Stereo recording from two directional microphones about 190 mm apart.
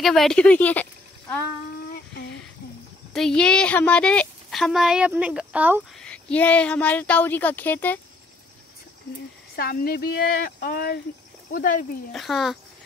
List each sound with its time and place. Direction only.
0.0 s a woman's voice: centre (ahead or behind)
3.1 s a woman's voice: 5° left (ahead or behind)
5.9 s speech: 5° left (ahead or behind)
9.6 s speech: 50° left (ahead or behind)
12.1 s a woman's voice: centre (ahead or behind)